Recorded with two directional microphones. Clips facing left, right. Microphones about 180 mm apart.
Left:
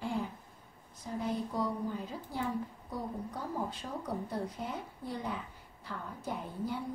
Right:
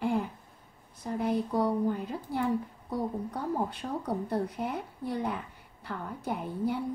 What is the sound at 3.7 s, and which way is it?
A woman's voice, 60° right (ahead or behind).